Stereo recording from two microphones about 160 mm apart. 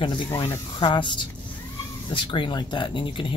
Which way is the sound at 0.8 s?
30° left (ahead or behind).